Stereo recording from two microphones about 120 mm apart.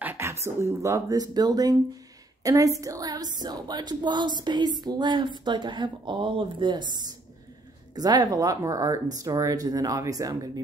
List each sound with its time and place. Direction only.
0.0 s a woman's voice: 20° right (ahead or behind)
2.8 s a sound: 30° right (ahead or behind)
7.9 s speech: 35° right (ahead or behind)